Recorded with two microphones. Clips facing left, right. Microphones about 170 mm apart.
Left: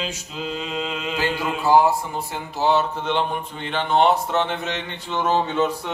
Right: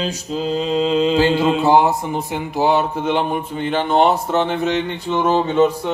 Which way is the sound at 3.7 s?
40° right (ahead or behind).